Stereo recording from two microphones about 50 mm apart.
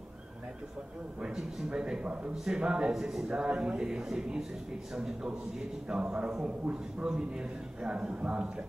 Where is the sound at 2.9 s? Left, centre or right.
Centre.